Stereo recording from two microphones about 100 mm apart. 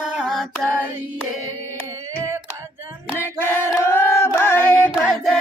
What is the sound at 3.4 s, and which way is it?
Singing, 25° left (ahead or behind).